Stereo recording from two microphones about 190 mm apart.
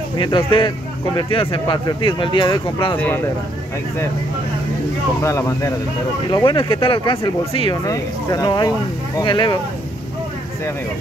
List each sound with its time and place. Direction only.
0.2 s speech: 25° left (ahead or behind)
5.2 s speech: 15° left (ahead or behind)